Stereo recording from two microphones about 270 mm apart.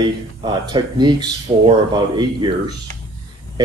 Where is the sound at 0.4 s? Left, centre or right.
Centre.